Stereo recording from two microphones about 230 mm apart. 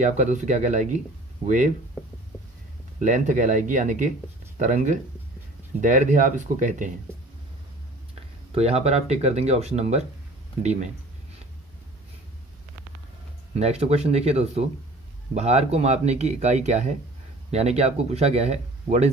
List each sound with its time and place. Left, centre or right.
0.0 s speech: right
3.0 s speech: right
8.1 s speech: right
13.6 s speech: right